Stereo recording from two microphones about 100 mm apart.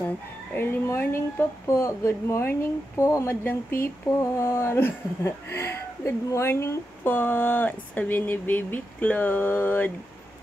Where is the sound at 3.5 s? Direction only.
20° left (ahead or behind).